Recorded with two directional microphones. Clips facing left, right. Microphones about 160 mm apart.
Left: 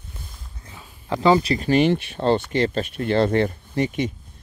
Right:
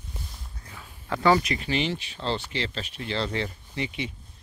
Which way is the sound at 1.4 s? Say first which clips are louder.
Left 9 dB; 40° left (ahead or behind).